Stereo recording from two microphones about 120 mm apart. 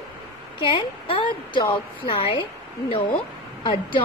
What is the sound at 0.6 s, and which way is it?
A woman's voice, 40° left (ahead or behind).